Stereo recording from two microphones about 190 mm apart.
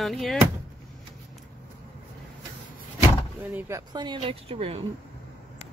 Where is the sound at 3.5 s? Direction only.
15° right (ahead or behind); by 4.8 s 30° right (ahead or behind).